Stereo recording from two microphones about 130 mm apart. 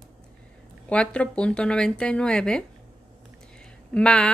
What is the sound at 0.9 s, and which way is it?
A woman's voice, 10° left (ahead or behind).